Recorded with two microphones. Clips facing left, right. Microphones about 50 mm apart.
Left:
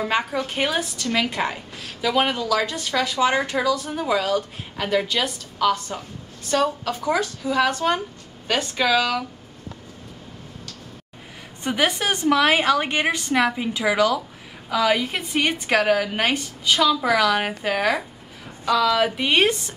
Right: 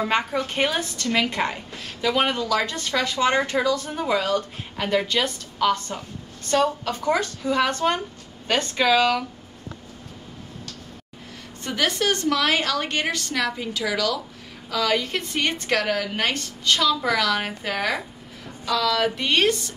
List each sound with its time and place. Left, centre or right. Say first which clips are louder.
0.0 s a woman's voice: even; centre
11.6 s a woman's voice: left 1 dB; centre